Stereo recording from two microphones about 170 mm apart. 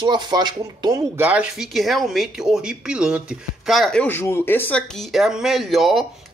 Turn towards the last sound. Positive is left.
turn(degrees=0)  # may be behind; listen again after turning